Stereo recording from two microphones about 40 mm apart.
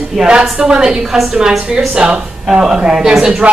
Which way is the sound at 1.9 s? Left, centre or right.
Right.